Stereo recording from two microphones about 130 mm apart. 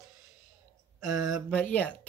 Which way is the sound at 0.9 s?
25° right (ahead or behind).